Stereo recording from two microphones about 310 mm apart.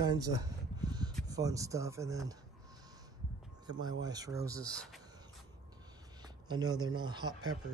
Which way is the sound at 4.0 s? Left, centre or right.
Centre.